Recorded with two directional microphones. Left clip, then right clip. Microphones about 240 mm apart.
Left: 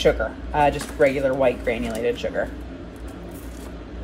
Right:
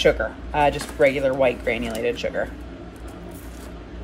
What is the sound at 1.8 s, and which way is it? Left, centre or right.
Speech, centre.